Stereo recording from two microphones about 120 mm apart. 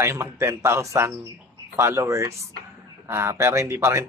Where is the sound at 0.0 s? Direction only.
20° right (ahead or behind).